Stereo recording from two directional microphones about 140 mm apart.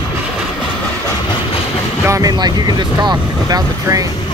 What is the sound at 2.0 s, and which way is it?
Speech, 25° right (ahead or behind).